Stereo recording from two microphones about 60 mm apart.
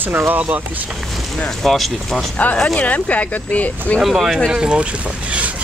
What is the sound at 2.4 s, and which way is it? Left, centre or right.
Speech, left.